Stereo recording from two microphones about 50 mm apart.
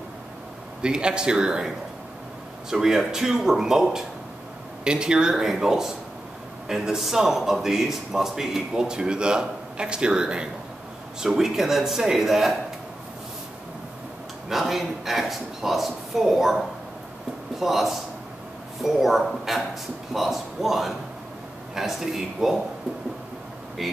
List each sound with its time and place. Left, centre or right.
0.8 s a man's voice: centre
2.7 s a man's voice: centre
14.5 s a man's voice: centre
23.8 s speech: centre